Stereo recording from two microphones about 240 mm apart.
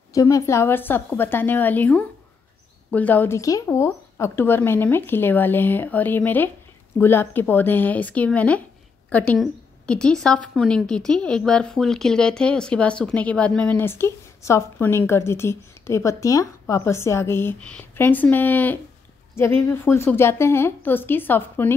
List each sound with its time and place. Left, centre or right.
0.1 s a woman's voice: centre